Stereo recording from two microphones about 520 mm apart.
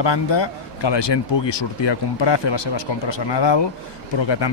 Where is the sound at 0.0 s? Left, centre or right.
Left.